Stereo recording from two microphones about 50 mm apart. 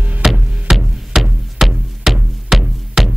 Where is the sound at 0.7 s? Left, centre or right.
Centre.